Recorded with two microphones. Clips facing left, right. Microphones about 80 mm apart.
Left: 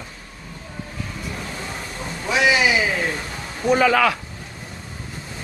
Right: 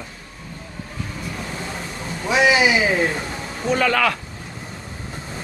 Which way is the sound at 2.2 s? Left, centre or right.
Centre.